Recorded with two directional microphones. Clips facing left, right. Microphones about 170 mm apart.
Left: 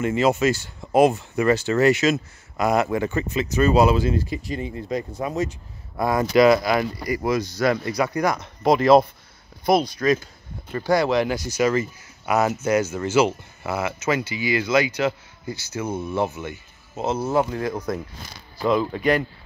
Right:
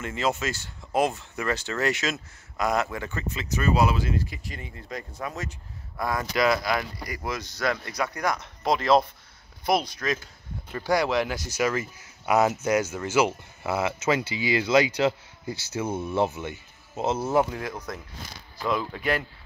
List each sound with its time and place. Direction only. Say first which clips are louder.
0.0 s speech: left 8 dB; 10° left (ahead or behind)
3.5 s speech: left 6 dB; 30° left (ahead or behind)
6.6 s speech: left 6 dB; 5° left (ahead or behind)
10.7 s speech: left 4 dB; 10° right (ahead or behind)
12.3 s speech: left 1 dB; 20° right (ahead or behind)
16.4 s speech: left 2 dB; 10° left (ahead or behind)
17.4 s speech: left 3 dB; 5° right (ahead or behind)